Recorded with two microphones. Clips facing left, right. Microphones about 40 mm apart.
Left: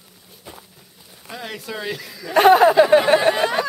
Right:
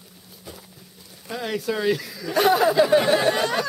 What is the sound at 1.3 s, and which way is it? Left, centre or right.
Speech, centre.